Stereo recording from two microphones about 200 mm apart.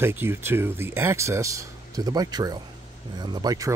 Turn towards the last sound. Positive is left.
turn(degrees=-15)  # may be behind; listen again after turning